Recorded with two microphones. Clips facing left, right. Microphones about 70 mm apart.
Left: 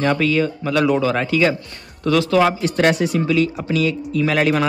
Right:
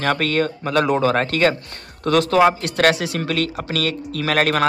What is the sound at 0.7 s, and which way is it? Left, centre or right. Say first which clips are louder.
Speech: even; right.